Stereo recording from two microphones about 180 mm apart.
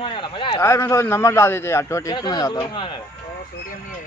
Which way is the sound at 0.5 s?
15° left (ahead or behind).